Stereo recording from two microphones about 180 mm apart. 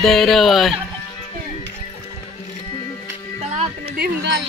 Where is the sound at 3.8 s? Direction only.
65° right (ahead or behind).